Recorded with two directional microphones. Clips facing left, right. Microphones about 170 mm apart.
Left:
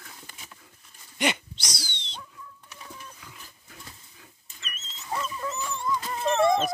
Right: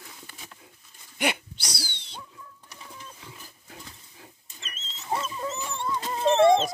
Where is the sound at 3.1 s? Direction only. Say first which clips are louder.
Right 2 dB; 25° right (ahead or behind).